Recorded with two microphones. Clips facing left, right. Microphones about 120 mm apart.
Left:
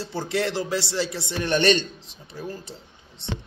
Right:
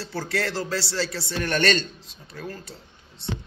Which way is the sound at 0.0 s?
20° left (ahead or behind).